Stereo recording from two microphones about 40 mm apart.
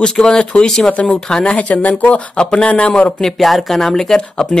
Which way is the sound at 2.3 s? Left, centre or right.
Left.